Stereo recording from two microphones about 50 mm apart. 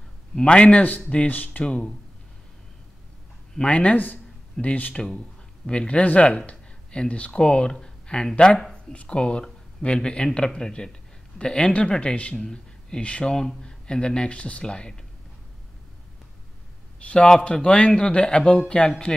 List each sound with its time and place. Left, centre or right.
0.4 s speech: left
3.6 s speech: left
4.9 s speech: centre
8.9 s speech: left
12.4 s speech: centre
17.0 s a man's voice: left